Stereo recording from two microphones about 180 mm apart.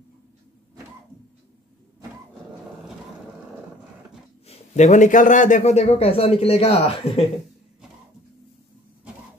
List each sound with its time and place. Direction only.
4.5 s a man's voice: 40° left (ahead or behind)